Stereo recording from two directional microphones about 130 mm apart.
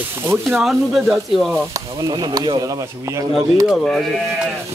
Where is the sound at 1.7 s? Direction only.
30° right (ahead or behind).